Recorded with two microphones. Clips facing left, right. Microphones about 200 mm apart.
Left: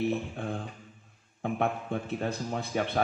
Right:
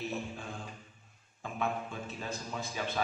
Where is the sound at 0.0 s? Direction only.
60° left (ahead or behind).